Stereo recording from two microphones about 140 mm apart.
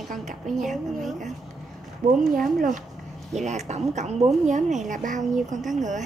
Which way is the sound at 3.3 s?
55° right (ahead or behind).